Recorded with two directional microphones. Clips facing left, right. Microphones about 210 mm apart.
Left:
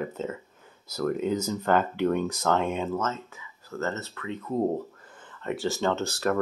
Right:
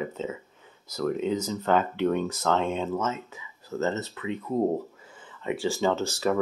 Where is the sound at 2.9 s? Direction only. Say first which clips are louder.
Right 1 dB; 10° right (ahead or behind).